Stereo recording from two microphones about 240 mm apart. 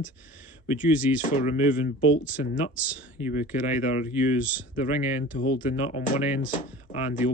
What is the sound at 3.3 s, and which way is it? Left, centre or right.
Speech, left.